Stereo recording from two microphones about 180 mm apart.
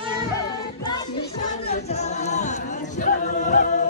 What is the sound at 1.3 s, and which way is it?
Music, 40° left (ahead or behind).